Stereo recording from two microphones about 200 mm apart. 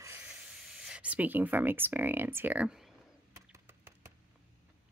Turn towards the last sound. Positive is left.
turn(degrees=-10)  # may be behind; listen again after turning